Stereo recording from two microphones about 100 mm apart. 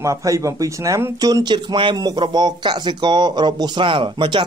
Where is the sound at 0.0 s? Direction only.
35° right (ahead or behind).